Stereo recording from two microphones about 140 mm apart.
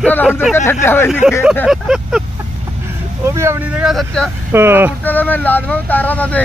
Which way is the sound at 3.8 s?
5° left (ahead or behind).